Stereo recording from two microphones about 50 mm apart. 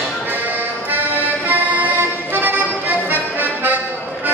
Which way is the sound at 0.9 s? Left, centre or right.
Right.